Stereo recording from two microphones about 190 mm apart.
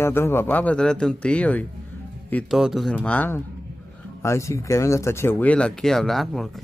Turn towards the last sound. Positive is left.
turn(degrees=0)  # may be behind; listen again after turning